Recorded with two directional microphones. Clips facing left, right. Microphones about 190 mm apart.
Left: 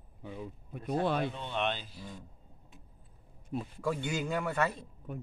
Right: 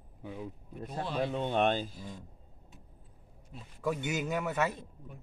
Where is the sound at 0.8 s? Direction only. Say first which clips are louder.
Left 3 dB; 60° left (ahead or behind).